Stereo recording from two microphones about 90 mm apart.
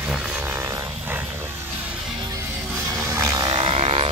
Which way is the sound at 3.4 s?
65° right (ahead or behind).